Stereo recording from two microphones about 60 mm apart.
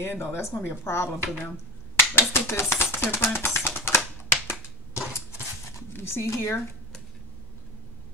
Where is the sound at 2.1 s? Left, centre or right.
Left.